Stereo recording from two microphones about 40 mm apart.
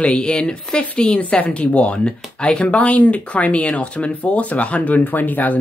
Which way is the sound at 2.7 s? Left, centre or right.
Left.